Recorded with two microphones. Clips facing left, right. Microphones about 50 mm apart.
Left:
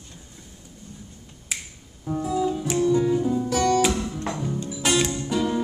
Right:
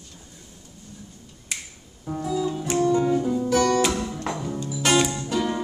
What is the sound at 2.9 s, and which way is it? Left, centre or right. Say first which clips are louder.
Music: left 1 dB; right.